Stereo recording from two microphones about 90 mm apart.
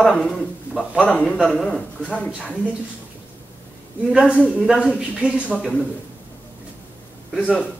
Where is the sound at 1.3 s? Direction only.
Centre (ahead or behind).